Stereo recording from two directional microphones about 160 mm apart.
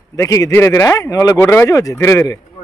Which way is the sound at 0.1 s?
20° left (ahead or behind).